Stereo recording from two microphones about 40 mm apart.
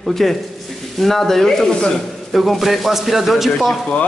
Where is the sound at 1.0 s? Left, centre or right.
Centre.